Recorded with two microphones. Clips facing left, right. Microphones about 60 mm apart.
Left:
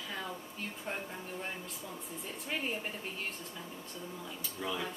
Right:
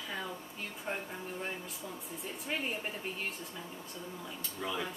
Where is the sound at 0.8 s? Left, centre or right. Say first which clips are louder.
Right 3 dB; centre.